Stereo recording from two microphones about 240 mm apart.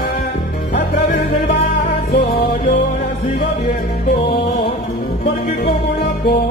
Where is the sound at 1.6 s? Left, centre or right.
Left.